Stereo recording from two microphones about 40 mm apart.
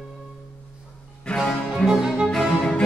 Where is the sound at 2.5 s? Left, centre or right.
Left.